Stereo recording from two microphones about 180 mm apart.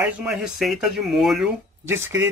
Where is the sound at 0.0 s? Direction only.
5° right (ahead or behind).